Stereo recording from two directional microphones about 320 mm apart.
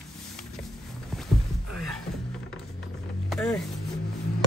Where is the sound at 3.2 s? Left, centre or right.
Centre.